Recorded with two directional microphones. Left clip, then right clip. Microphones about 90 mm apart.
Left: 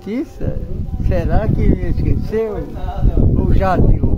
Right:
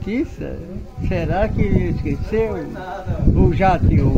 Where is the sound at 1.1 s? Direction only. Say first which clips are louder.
Even; 25° left (ahead or behind).